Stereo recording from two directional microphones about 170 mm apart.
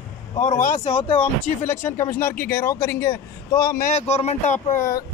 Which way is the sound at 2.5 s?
15° left (ahead or behind).